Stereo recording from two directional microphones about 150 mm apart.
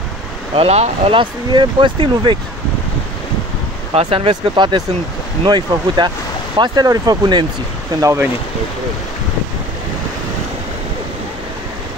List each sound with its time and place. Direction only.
0.6 s speech: 40° right (ahead or behind)
3.9 s speech: 40° right (ahead or behind); by 8.3 s 20° right (ahead or behind)